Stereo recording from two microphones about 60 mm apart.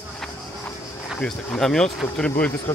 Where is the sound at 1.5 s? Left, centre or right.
Centre.